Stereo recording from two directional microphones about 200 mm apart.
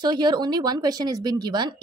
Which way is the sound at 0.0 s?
20° right (ahead or behind).